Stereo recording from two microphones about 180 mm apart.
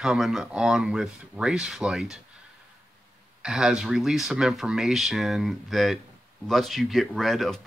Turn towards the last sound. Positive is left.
turn(degrees=0)  # may be behind; listen again after turning